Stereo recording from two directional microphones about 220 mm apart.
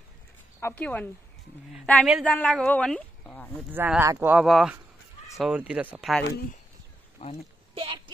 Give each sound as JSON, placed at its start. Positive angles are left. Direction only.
{"t": 0.6, "sound": "a man's voice", "side_deg": 10}
{"t": 3.7, "sound": "speech", "side_deg": -10}
{"t": 7.2, "sound": "speech", "side_deg": 25}
{"t": 7.7, "sound": "a sound", "side_deg": -25}